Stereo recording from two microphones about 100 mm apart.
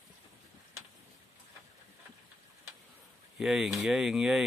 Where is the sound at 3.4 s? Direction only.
5° right (ahead or behind).